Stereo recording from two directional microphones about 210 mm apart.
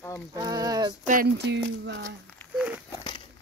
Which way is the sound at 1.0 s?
40° right (ahead or behind).